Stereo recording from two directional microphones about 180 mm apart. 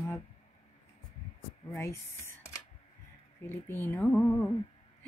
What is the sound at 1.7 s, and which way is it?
Speech, 15° left (ahead or behind).